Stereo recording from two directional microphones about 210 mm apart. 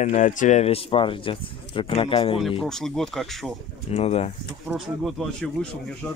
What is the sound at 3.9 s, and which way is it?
Speech, 30° left (ahead or behind).